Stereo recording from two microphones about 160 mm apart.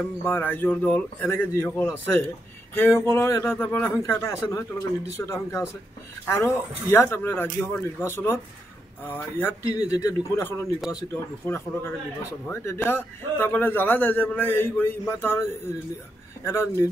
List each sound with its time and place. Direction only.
0.0 s speech: 10° left (ahead or behind)
16.4 s speech: 15° left (ahead or behind)